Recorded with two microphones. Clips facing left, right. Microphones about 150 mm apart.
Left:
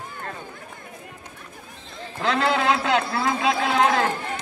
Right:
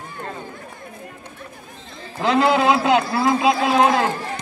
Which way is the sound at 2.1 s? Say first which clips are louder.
Right 5 dB; 15° right (ahead or behind).